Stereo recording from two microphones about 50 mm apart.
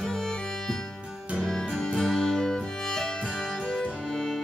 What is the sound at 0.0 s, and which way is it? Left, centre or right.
Music, centre.